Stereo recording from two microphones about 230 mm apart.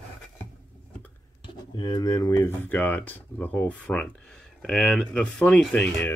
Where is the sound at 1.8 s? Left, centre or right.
Centre.